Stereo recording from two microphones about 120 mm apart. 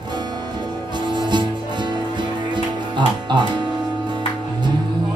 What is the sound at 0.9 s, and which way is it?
Music, 40° right (ahead or behind).